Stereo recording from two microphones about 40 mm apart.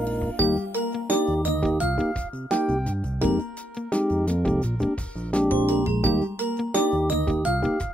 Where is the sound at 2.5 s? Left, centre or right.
Left.